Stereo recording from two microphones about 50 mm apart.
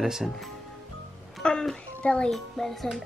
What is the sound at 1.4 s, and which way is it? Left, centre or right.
Speech, centre.